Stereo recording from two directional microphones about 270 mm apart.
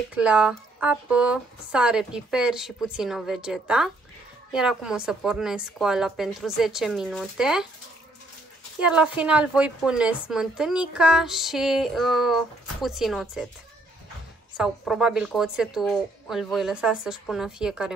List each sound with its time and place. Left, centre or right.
0.1 s a woman's voice: centre
8.7 s a woman's voice: centre
14.6 s a woman's voice: centre